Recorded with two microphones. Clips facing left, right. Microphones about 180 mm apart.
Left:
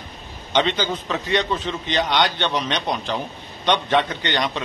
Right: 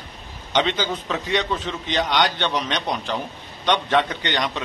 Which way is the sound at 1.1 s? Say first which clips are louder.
Left 2 dB; 5° right (ahead or behind).